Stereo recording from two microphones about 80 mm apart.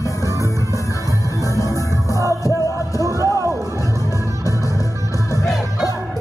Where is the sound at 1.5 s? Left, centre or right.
Left.